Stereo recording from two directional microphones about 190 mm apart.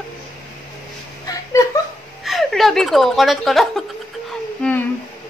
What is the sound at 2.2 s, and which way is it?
Speech, centre (ahead or behind).